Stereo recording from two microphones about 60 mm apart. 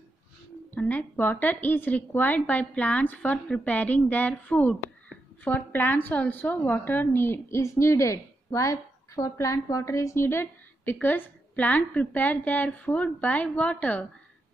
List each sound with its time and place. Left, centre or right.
0.8 s a woman's voice: left
5.4 s a woman's voice: left